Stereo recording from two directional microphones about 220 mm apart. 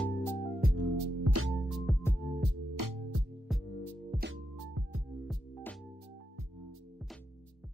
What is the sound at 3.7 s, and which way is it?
Music, 15° left (ahead or behind).